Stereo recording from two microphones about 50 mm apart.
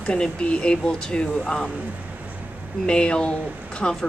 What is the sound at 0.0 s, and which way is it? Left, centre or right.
Speech, centre.